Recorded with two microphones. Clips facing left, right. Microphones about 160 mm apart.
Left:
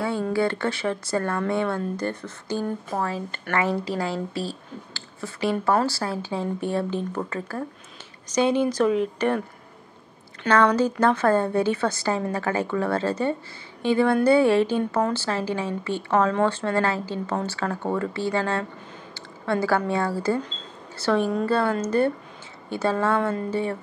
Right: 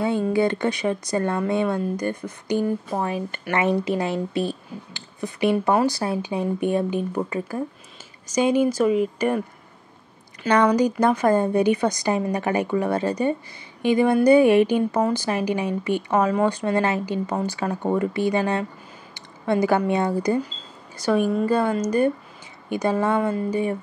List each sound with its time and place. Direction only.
0.0 s speech: 20° right (ahead or behind)
10.5 s speech: 15° right (ahead or behind)